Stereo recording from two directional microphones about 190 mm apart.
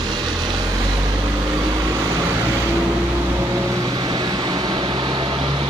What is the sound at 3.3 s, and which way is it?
Vehicle, 15° right (ahead or behind).